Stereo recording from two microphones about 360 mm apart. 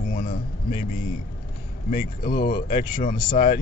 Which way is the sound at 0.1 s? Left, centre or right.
Left.